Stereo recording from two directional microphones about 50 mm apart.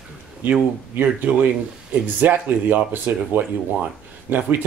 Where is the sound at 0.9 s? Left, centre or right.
Right.